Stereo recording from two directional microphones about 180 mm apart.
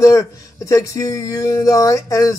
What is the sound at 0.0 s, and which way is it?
Speech, 20° left (ahead or behind).